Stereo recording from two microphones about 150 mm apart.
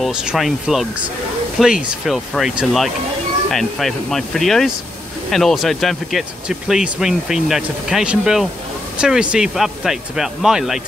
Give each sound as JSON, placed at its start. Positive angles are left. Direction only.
{"t": 0.0, "sound": "speech", "side_deg": -5}